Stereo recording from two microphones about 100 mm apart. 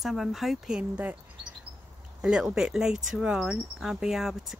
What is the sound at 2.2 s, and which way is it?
Speech, 5° right (ahead or behind).